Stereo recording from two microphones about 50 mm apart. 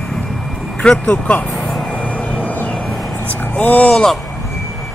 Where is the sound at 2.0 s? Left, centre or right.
Left.